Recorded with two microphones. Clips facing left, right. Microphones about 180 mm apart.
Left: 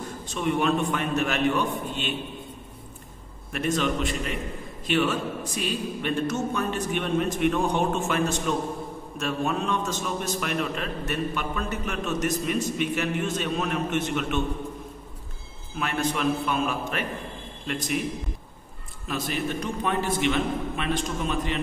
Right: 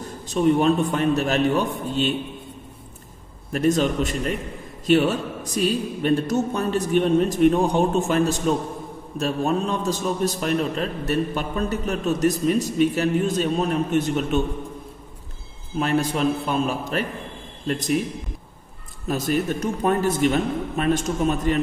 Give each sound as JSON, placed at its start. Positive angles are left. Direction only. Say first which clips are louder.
{"t": 0.3, "sound": "a man's voice", "louder": "right 6 dB", "side_deg": -35}
{"t": 3.5, "sound": "a man's voice", "louder": "right 6 dB", "side_deg": -40}
{"t": 15.8, "sound": "a man's voice", "louder": "right 5 dB", "side_deg": -35}
{"t": 19.0, "sound": "a man's voice", "louder": "right 6 dB", "side_deg": -45}